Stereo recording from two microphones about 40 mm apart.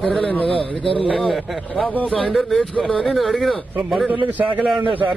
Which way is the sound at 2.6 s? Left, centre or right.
Left.